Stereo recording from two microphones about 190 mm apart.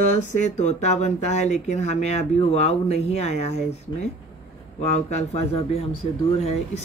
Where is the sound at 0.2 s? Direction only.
40° left (ahead or behind).